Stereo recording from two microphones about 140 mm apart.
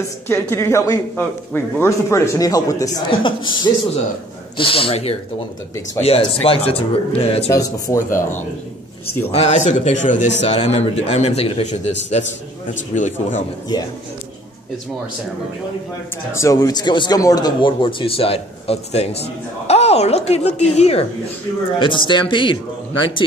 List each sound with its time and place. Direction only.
0.3 s a man's voice: 20° left (ahead or behind)
3.1 s a man's voice: 35° left (ahead or behind)
7.5 s a man's voice: 25° left (ahead or behind)
9.3 s a man's voice: 50° left (ahead or behind)
16.3 s a man's voice: 20° left (ahead or behind); by 21.1 s 45° left (ahead or behind)
21.7 s speech: 35° left (ahead or behind)